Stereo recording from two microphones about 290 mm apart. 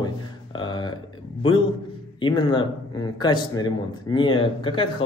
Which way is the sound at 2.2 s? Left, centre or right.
Centre.